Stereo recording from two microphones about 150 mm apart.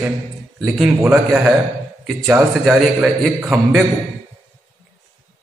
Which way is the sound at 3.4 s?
15° right (ahead or behind).